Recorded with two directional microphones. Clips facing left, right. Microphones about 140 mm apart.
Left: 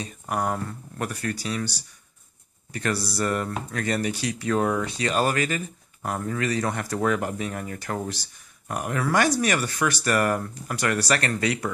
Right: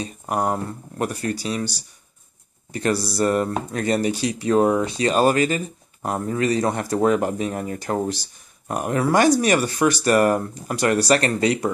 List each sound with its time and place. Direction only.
0.0 s speech: 25° right (ahead or behind)